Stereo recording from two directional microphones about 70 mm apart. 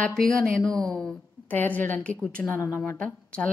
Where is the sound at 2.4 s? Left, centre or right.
Left.